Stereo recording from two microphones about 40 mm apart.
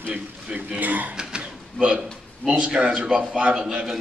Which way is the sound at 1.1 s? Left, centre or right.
Right.